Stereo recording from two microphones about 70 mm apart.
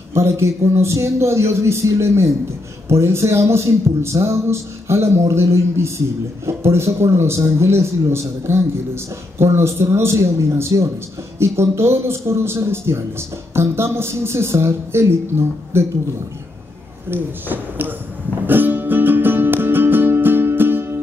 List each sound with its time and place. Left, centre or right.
0.1 s speech: right
17.1 s speech: right
18.5 s music: right